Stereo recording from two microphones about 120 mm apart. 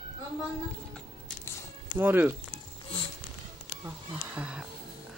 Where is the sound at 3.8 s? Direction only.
15° right (ahead or behind).